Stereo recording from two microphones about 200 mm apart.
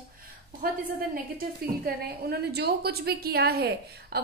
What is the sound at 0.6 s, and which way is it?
A woman's voice, 50° right (ahead or behind).